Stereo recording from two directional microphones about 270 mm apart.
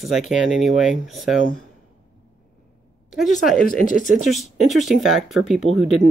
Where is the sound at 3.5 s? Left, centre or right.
Left.